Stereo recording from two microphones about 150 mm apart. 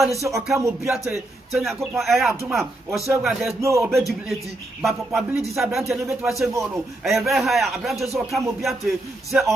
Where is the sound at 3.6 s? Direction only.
20° right (ahead or behind).